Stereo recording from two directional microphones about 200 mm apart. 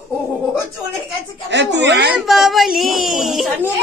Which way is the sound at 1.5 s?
60° right (ahead or behind).